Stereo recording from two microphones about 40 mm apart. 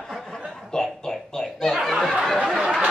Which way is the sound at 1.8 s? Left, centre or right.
Centre.